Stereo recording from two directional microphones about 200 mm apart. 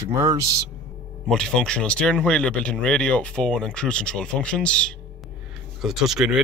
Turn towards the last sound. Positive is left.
turn(degrees=0)  # may be behind; listen again after turning